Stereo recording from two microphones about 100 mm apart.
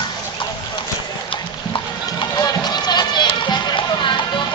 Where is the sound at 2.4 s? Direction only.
40° left (ahead or behind).